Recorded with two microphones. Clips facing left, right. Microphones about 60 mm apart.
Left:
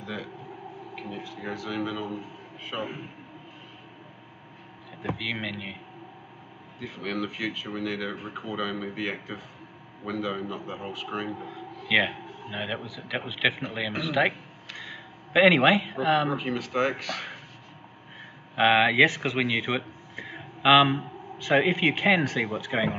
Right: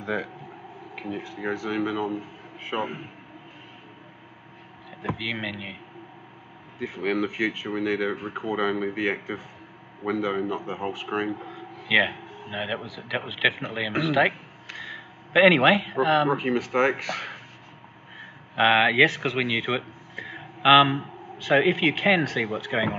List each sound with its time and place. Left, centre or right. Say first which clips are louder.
0.0 s speech: right 7 dB; right
0.9 s speech: right 5 dB; right
5.0 s speech: right 1 dB; centre
6.8 s speech: right 6 dB; right
11.9 s speech: right 2 dB; centre
16.3 s speech: right 5 dB; right
18.6 s speech: right 1 dB; centre